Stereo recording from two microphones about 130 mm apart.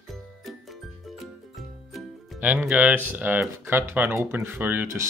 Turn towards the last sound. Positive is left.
turn(degrees=-20)  # may be behind; listen again after turning